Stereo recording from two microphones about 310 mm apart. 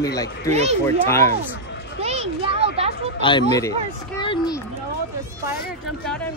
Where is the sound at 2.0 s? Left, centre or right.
Centre.